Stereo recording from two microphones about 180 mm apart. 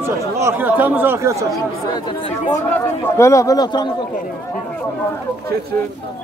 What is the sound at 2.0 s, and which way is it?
Speech, 25° left (ahead or behind).